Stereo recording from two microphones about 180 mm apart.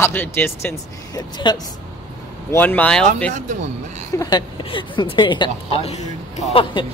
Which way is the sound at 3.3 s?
40° right (ahead or behind).